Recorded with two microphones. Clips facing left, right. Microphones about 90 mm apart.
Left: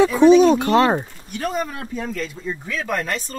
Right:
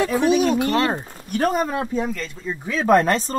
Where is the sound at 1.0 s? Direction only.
45° right (ahead or behind).